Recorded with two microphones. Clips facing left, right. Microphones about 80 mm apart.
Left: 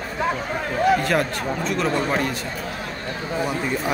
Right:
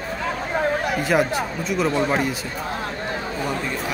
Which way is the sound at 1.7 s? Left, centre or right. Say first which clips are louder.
Right 3 dB; centre.